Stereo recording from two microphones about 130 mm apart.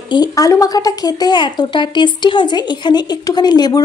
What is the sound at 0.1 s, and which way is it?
Speech, 30° left (ahead or behind).